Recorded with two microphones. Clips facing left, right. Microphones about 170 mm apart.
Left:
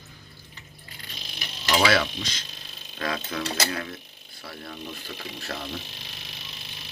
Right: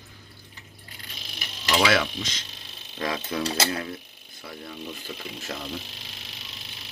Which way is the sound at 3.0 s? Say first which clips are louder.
Right 2 dB; 20° right (ahead or behind).